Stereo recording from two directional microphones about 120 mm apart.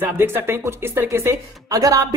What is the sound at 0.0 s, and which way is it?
Speech, 20° right (ahead or behind).